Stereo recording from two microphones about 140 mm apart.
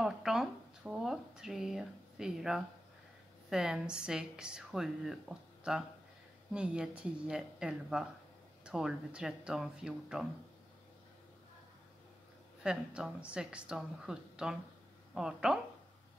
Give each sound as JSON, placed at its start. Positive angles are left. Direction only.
{"t": 0.0, "sound": "a sound", "side_deg": -5}
{"t": 3.4, "sound": "a woman's voice", "side_deg": -5}
{"t": 12.6, "sound": "a woman's voice", "side_deg": -5}